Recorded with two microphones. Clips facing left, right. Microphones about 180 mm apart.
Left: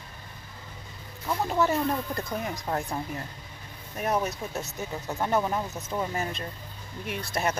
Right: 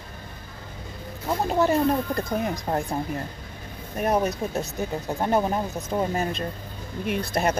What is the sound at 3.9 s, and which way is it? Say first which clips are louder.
Speech: right 5 dB; 30° right (ahead or behind).